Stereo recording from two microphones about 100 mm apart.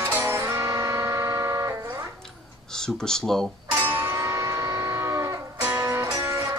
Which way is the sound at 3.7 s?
20° right (ahead or behind).